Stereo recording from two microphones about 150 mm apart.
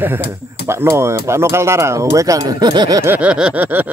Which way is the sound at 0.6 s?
15° right (ahead or behind).